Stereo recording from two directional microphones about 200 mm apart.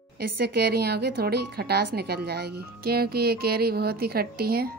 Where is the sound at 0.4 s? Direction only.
55° right (ahead or behind).